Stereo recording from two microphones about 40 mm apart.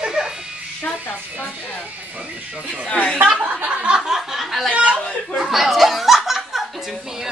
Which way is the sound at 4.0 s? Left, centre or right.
Centre.